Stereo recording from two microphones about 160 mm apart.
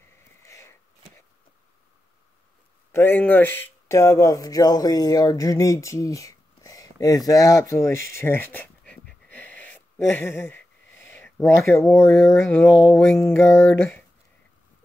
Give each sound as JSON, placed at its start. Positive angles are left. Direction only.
{"t": 0.4, "sound": "a sound", "side_deg": 15}
{"t": 2.9, "sound": "speech", "side_deg": 10}
{"t": 8.1, "sound": "dog", "side_deg": 15}
{"t": 13.7, "sound": "speech", "side_deg": 5}